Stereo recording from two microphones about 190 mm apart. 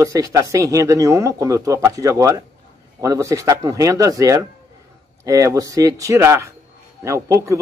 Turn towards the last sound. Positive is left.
turn(degrees=-15)  # may be behind; listen again after turning